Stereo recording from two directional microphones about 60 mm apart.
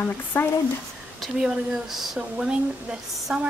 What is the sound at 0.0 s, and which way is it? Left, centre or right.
Speech, left.